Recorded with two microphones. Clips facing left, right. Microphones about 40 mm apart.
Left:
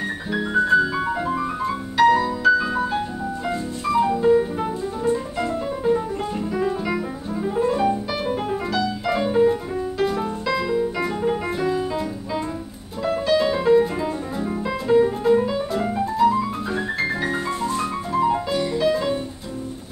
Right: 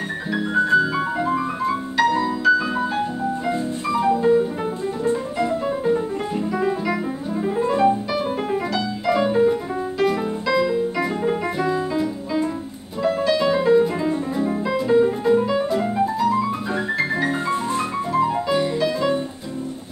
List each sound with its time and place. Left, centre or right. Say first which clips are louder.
0.3 s music: even; centre
5.9 s music: left 2 dB; centre
18.5 s music: right 3 dB; centre
18.8 s music: even; centre